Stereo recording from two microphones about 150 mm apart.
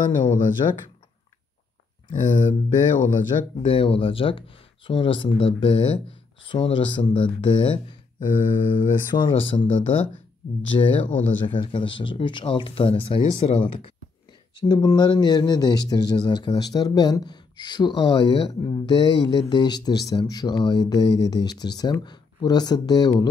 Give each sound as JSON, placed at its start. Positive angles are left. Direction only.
{"t": 0.6, "sound": "speech", "side_deg": 35}
{"t": 2.2, "sound": "speech", "side_deg": 55}
{"t": 3.6, "sound": "speech", "side_deg": 40}
{"t": 8.2, "sound": "speech", "side_deg": 60}
{"t": 9.1, "sound": "speech", "side_deg": 35}